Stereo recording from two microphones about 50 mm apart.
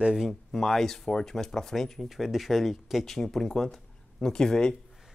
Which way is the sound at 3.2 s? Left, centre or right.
Centre.